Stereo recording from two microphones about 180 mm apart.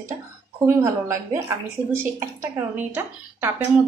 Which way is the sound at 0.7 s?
15° right (ahead or behind).